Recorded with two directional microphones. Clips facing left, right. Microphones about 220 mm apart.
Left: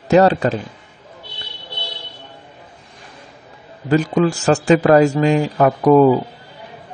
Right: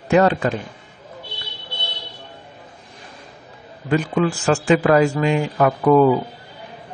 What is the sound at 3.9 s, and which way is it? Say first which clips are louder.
Speech: left 3 dB; 40° left (ahead or behind).